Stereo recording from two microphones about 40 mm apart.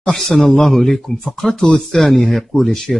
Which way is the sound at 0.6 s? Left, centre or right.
Centre.